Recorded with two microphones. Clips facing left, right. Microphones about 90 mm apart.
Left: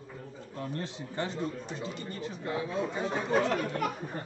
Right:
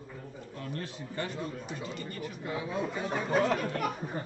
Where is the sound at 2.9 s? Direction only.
20° left (ahead or behind).